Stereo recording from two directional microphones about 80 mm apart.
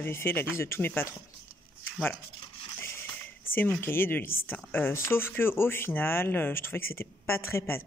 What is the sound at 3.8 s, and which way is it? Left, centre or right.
Speech, left.